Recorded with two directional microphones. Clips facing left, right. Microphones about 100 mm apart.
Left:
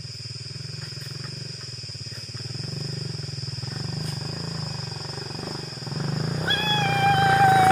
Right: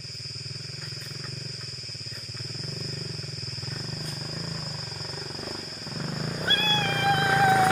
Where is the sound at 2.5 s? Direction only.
10° left (ahead or behind).